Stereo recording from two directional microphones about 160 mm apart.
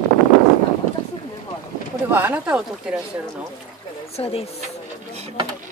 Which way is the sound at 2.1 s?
10° right (ahead or behind).